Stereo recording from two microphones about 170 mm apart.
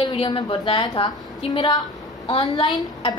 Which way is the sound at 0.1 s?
30° left (ahead or behind).